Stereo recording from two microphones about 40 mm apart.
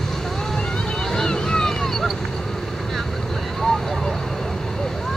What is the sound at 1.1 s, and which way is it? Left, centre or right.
Vehicle, centre.